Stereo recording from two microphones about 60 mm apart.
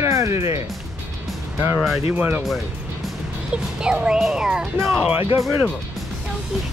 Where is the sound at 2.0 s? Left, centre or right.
Right.